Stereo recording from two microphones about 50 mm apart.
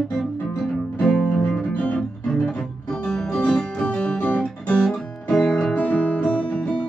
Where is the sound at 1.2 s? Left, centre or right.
Left.